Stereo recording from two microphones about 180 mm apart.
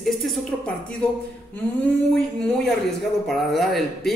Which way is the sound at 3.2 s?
Centre (ahead or behind).